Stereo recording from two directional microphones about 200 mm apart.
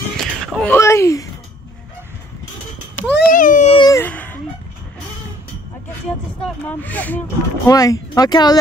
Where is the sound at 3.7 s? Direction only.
20° left (ahead or behind).